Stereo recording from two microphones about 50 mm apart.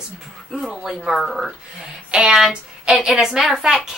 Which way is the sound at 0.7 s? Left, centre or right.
Centre.